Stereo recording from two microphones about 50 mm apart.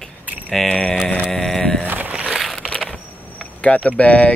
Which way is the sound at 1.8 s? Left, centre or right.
Right.